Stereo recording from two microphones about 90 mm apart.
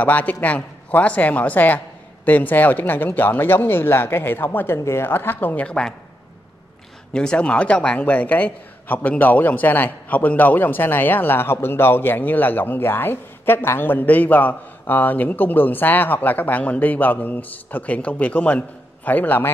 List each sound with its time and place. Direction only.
0.0 s speech: 20° left (ahead or behind)
7.2 s speech: 10° left (ahead or behind)